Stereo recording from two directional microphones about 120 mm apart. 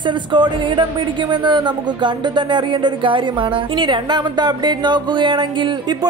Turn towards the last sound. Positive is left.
turn(degrees=-40)  # may be behind; listen again after turning